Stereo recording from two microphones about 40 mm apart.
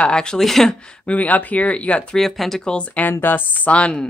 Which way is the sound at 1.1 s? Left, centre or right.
Left.